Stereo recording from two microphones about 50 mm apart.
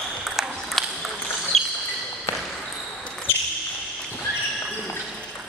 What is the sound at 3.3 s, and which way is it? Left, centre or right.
Basketball bounce, left.